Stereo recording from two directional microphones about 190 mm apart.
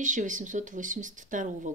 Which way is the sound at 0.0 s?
40° right (ahead or behind).